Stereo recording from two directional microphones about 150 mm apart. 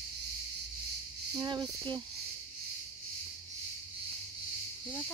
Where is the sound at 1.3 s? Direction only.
25° right (ahead or behind).